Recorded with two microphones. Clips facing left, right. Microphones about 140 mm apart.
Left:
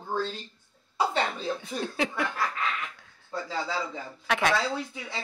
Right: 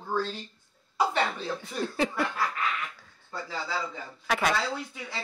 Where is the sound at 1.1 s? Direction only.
20° left (ahead or behind).